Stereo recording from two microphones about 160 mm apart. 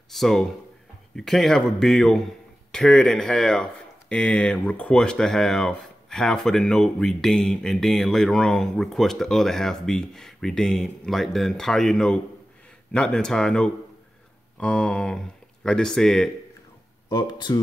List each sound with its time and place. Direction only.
0.1 s a man's voice: centre (ahead or behind)
17.1 s speech: 25° left (ahead or behind)